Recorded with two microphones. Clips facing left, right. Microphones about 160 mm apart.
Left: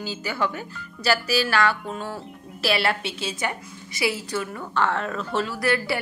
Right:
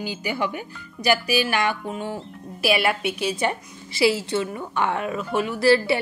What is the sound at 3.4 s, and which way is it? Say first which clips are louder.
A woman's voice: right 4 dB; 25° right (ahead or behind).